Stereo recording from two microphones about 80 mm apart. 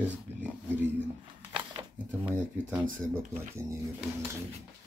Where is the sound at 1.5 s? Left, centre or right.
Right.